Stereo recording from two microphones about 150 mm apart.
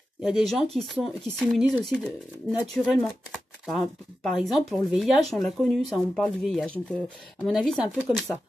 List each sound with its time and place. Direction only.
0.2 s speech: centre (ahead or behind)